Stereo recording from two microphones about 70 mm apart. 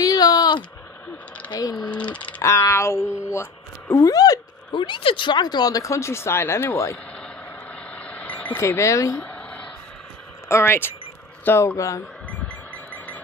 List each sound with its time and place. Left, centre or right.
0.0 s a sound: left
1.5 s speech: left
2.4 s speech: left
3.9 s speech: left
7.9 s vehicle: centre
8.5 s speech: left
9.2 s a sound: centre
10.5 s speech: left
11.6 s speech: left
12.3 s a sound: centre